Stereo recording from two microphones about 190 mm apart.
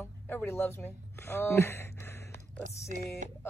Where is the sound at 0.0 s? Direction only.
10° left (ahead or behind).